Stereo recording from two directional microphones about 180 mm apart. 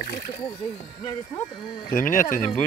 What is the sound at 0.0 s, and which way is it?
Music, 50° left (ahead or behind).